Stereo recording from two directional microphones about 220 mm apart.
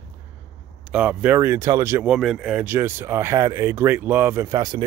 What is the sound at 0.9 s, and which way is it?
Speech, 5° right (ahead or behind).